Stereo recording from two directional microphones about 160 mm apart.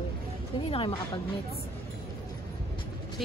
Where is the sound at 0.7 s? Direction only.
30° left (ahead or behind).